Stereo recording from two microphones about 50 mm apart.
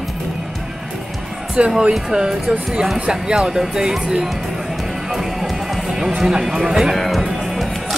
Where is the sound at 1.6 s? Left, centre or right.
Right.